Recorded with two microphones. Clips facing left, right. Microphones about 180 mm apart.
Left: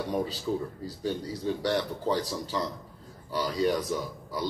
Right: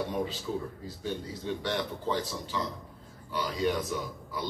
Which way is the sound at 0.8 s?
40° left (ahead or behind).